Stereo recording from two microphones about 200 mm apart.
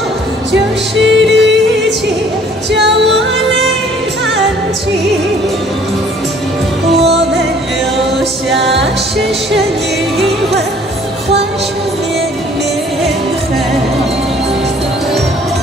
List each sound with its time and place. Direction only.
1.0 s music: 65° right (ahead or behind)
8.5 s music: centre (ahead or behind)
10.1 s music: centre (ahead or behind)